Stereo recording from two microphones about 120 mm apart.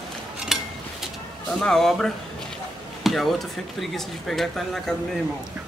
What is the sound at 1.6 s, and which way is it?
Speech, 5° left (ahead or behind).